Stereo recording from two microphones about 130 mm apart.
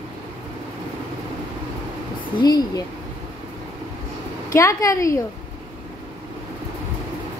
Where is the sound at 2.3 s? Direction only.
30° left (ahead or behind).